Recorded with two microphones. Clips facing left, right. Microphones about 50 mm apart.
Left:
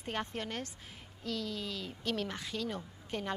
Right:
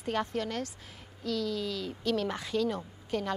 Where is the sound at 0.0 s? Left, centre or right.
Centre.